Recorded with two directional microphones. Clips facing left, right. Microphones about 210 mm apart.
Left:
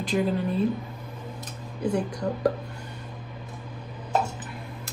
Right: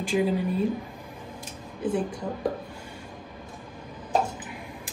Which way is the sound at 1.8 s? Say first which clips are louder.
Left 1 dB; 5° right (ahead or behind).